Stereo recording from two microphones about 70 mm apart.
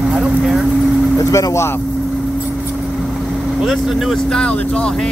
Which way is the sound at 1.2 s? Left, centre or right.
Left.